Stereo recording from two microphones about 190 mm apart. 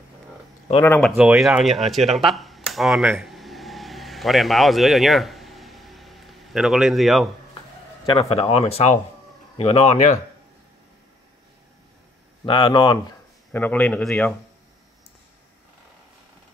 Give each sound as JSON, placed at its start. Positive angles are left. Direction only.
{"t": 0.7, "sound": "a man's voice", "side_deg": 10}
{"t": 1.1, "sound": "speech", "side_deg": -5}
{"t": 3.1, "sound": "vehicle", "side_deg": 0}
{"t": 8.1, "sound": "speech", "side_deg": 30}
{"t": 12.4, "sound": "speech", "side_deg": 25}
{"t": 13.5, "sound": "a man's voice", "side_deg": 10}